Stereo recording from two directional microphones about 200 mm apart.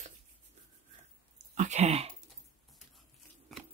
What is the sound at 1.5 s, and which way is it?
Speech, 35° right (ahead or behind).